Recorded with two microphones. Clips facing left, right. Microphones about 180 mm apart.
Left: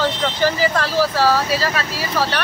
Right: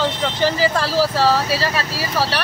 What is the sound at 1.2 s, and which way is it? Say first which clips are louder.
Speech: even; 30° right (ahead or behind).